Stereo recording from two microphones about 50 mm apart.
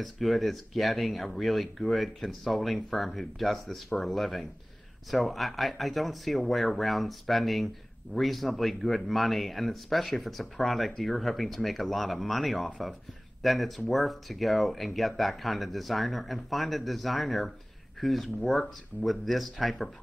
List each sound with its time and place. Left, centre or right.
0.0 s speech: centre